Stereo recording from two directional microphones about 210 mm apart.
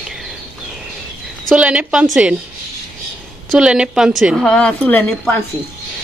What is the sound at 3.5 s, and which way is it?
A woman's voice, 5° right (ahead or behind).